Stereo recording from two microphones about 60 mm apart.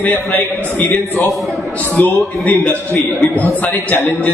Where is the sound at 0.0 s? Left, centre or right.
Left.